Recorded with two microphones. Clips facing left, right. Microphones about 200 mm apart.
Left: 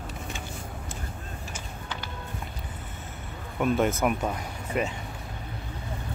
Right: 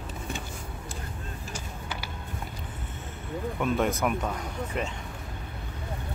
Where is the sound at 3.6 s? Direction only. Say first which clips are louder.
Left 3 dB; 5° left (ahead or behind).